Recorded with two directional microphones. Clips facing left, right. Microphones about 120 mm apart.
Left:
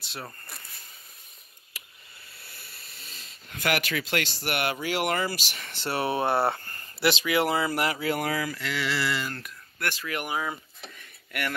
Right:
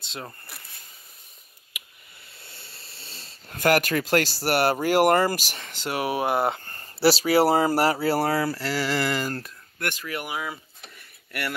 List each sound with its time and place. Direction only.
0.0 s a sound: 20° right (ahead or behind)
2.3 s speech: 25° right (ahead or behind); by 5.6 s 45° right (ahead or behind)
5.7 s speech: 15° right (ahead or behind); by 9.5 s 40° right (ahead or behind)
9.8 s speech: 20° right (ahead or behind)
10.3 s speech: 25° left (ahead or behind)